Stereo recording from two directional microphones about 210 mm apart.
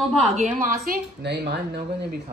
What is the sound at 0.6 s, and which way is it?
Speech, 45° right (ahead or behind).